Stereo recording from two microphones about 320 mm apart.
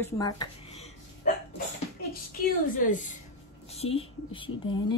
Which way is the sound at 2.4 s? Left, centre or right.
Left.